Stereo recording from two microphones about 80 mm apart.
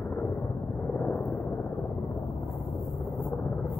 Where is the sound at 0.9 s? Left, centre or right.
Left.